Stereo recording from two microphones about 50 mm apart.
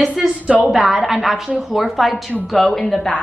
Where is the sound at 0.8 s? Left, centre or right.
Centre.